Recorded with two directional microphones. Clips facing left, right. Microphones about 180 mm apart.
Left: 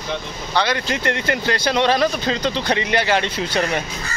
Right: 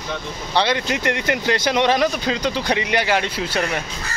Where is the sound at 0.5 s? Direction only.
25° right (ahead or behind).